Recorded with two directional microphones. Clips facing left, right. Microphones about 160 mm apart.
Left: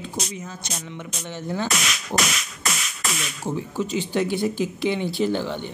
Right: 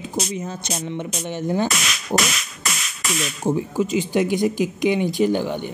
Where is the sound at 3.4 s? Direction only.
10° right (ahead or behind).